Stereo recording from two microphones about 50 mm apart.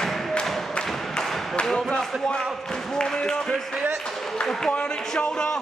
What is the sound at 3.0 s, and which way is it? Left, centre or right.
Speech, centre.